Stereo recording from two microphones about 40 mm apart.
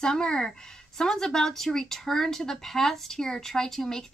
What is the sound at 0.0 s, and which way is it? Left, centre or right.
Speech, centre.